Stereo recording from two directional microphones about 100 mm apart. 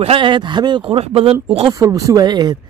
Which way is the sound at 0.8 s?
75° right (ahead or behind).